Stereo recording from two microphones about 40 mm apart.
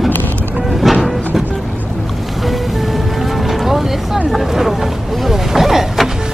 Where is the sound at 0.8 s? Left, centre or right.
Centre.